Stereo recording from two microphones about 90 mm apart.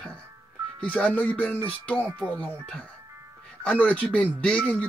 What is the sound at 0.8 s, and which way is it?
Speech, 15° left (ahead or behind).